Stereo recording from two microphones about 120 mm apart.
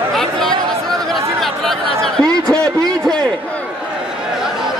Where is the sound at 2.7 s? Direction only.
30° right (ahead or behind).